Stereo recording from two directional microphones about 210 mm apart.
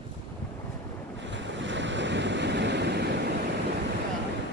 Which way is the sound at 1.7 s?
60° right (ahead or behind).